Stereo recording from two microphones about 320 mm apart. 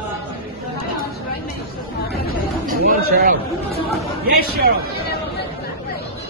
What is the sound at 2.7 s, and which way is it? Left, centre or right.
Chatter, right.